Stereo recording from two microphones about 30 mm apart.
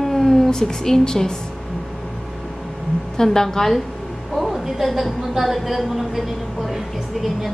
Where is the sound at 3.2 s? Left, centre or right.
Centre.